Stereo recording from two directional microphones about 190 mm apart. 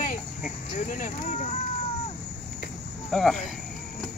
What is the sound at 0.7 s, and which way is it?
Speech, 40° left (ahead or behind).